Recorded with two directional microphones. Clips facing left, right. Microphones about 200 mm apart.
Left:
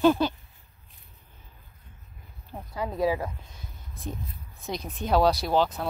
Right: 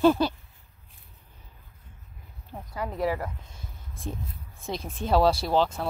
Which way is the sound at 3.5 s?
30° right (ahead or behind).